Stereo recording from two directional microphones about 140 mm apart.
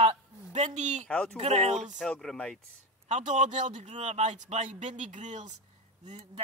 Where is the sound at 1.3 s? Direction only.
50° right (ahead or behind).